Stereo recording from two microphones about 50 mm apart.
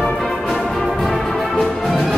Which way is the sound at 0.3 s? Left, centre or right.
Centre.